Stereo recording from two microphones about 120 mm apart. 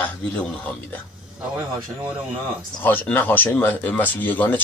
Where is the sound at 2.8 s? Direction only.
15° left (ahead or behind).